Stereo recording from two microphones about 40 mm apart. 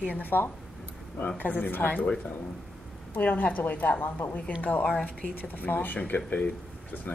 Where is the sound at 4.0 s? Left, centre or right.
Left.